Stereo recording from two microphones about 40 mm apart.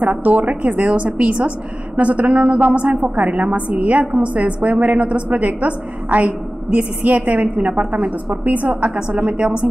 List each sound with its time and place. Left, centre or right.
0.0 s a woman's voice: right
3.2 s a woman's voice: right
3.5 s a woman's voice: right